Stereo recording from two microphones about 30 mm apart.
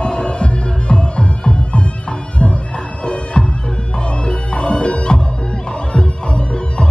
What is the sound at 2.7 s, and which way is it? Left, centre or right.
Music, left.